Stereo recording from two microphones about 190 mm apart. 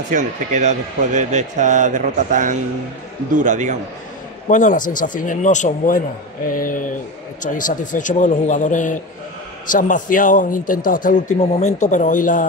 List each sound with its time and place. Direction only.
0.1 s a man's voice: 40° right (ahead or behind)
4.5 s a man's voice: 40° left (ahead or behind)